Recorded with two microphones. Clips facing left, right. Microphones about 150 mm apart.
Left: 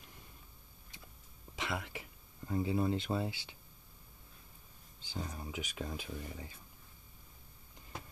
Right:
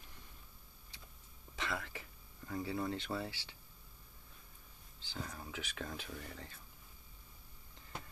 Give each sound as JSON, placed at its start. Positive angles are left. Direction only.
{"t": 1.6, "sound": "speech", "side_deg": 15}
{"t": 5.0, "sound": "speech", "side_deg": 15}